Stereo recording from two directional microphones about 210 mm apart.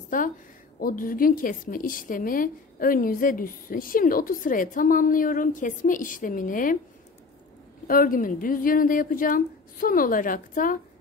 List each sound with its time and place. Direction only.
0.1 s a woman's voice: 40° left (ahead or behind)
7.8 s a woman's voice: 45° left (ahead or behind)